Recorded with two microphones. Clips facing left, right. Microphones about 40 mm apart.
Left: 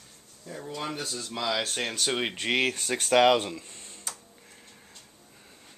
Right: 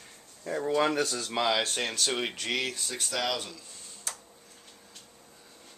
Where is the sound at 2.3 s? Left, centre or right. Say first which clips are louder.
Left 5 dB; left.